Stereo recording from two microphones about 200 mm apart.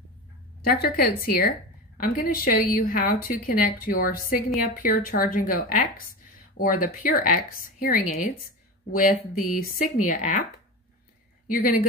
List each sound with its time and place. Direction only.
0.7 s a woman's voice: 50° left (ahead or behind)
11.4 s speech: 45° left (ahead or behind)